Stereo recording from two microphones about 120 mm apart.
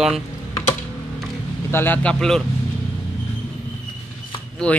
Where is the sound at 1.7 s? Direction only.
20° left (ahead or behind).